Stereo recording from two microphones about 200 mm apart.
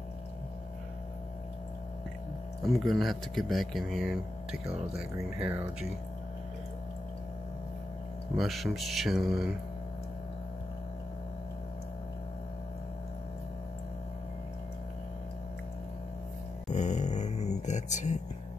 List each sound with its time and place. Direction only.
2.7 s speech: centre (ahead or behind)
8.4 s speech: centre (ahead or behind)
16.7 s speech: 35° left (ahead or behind)